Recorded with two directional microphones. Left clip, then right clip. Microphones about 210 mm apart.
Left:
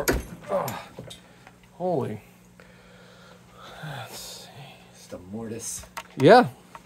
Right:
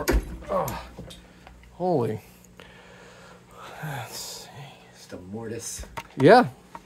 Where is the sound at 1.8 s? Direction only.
55° right (ahead or behind).